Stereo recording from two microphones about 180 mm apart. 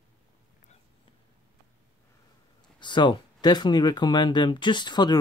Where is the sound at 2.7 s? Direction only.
25° left (ahead or behind).